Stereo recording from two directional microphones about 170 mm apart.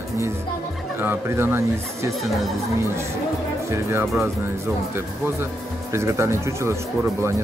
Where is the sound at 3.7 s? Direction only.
15° right (ahead or behind).